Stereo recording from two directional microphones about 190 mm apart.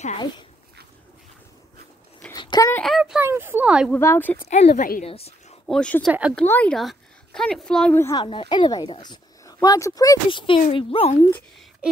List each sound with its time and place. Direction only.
2.3 s a sound: 20° left (ahead or behind)
2.7 s speech: centre (ahead or behind)
3.9 s speech: 10° left (ahead or behind)
4.5 s a woman's voice: 35° left (ahead or behind)
5.7 s speech: 5° left (ahead or behind); by 11.1 s 30° left (ahead or behind)